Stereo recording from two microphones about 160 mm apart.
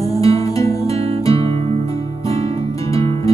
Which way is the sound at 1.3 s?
35° right (ahead or behind).